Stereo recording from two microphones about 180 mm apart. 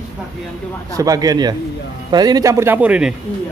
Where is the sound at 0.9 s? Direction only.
20° right (ahead or behind).